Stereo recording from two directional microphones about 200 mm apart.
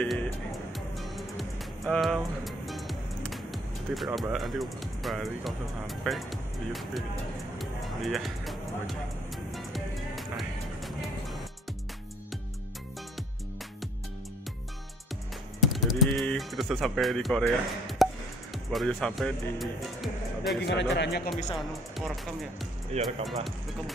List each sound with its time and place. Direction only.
0.0 s music: centre (ahead or behind)
1.9 s speech: centre (ahead or behind)
7.5 s music: centre (ahead or behind)
15.6 s speech: centre (ahead or behind)
20.6 s a man's voice: 60° left (ahead or behind)
21.5 s speech: centre (ahead or behind)
22.9 s speech: 30° right (ahead or behind)